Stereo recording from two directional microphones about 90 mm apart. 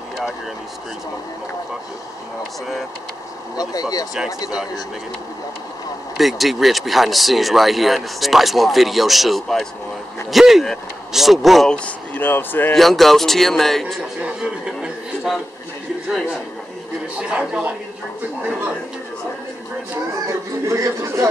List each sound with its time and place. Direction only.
4.5 s speech: 10° right (ahead or behind)
6.1 s speech: centre (ahead or behind)
11.7 s speech: 15° left (ahead or behind)
12.7 s speech: centre (ahead or behind)
14.2 s a sound: 10° right (ahead or behind)
17.2 s speech: 10° right (ahead or behind)
20.6 s a man's voice: 35° right (ahead or behind)